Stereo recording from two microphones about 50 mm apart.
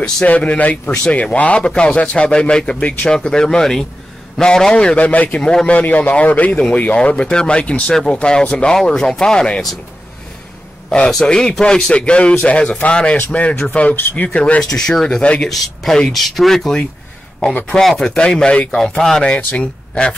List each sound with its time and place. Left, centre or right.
0.3 s a man's voice: left
0.8 s speech: centre
1.1 s a man's voice: left
5.4 s a man's voice: centre
5.8 s a man's voice: left
7.9 s a man's voice: centre
11.1 s a man's voice: centre
14.6 s speech: centre
15.5 s speech: centre
17.7 s speech: centre
18.8 s speech: centre
19.2 s a man's voice: left